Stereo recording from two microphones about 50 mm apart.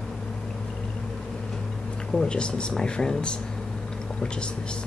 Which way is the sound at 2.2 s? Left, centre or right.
Centre.